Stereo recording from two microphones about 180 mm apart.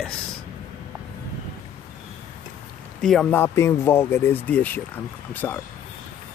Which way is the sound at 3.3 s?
15° left (ahead or behind).